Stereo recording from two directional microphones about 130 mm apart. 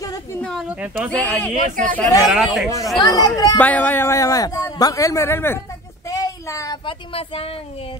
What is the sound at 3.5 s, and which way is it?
A man's voice, 10° left (ahead or behind).